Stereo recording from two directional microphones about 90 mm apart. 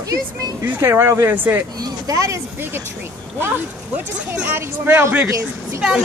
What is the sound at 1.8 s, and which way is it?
Speech, 40° right (ahead or behind).